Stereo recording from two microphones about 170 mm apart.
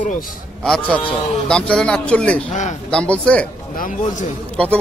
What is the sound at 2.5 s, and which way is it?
Speech, 45° left (ahead or behind).